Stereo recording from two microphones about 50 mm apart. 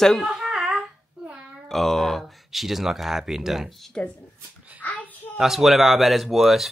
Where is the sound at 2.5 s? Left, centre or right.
Centre.